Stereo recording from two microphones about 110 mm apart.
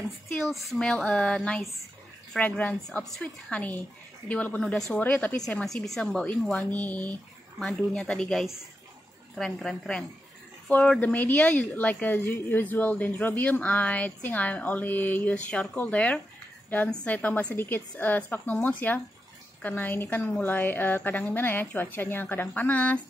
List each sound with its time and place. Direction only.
0.7 s a woman's voice: 5° left (ahead or behind)